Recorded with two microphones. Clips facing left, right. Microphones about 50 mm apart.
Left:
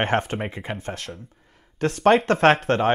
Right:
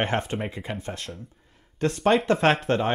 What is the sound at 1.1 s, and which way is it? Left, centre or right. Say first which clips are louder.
Speech: left 1 dB; centre.